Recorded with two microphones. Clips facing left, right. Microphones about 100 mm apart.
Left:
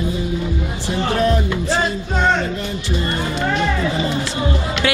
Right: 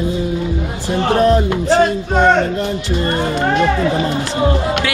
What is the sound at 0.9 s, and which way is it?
Speech, 45° right (ahead or behind).